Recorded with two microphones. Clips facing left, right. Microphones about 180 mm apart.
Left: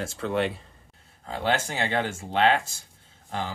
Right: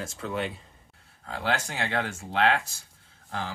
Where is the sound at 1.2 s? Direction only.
25° left (ahead or behind).